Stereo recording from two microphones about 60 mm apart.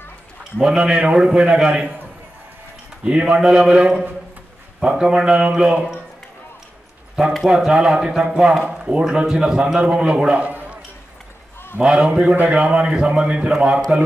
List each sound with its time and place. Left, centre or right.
0.6 s a man's voice: centre
3.0 s a man's voice: centre
7.4 s a man's voice: centre
8.4 s a man's voice: centre
11.8 s a man's voice: centre